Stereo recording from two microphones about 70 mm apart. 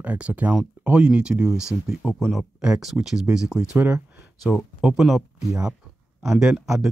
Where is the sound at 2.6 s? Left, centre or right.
Centre.